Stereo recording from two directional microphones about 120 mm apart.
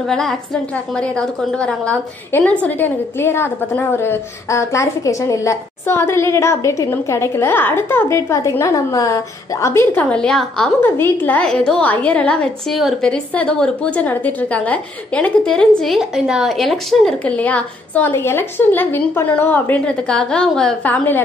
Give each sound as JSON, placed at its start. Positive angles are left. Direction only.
{"t": 0.0, "sound": "a woman's voice", "side_deg": 5}
{"t": 10.0, "sound": "a woman's voice", "side_deg": 5}
{"t": 10.8, "sound": "a woman's voice", "side_deg": 20}